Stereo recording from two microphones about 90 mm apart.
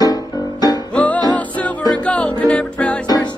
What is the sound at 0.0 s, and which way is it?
Music, 45° left (ahead or behind).